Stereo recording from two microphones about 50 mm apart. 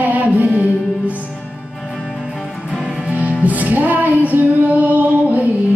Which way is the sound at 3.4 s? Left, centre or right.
Right.